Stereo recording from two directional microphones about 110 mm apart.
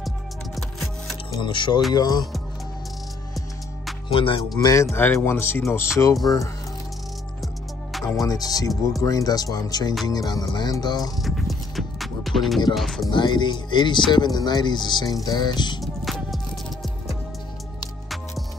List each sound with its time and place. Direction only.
0.6 s music: centre (ahead or behind)
1.4 s speech: 45° left (ahead or behind)
2.0 s music: 35° left (ahead or behind)
4.1 s speech: 55° left (ahead or behind)
4.6 s music: 35° left (ahead or behind)
4.9 s speech: 20° left (ahead or behind)
8.2 s music: 35° left (ahead or behind)
11.2 s music: centre (ahead or behind)
12.7 s speech: centre (ahead or behind)
13.1 s speech: 45° left (ahead or behind)
14.1 s music: 40° left (ahead or behind)
15.8 s music: centre (ahead or behind)